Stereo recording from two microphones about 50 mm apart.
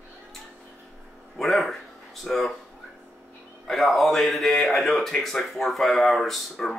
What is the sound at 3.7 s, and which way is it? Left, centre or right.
Speech, centre.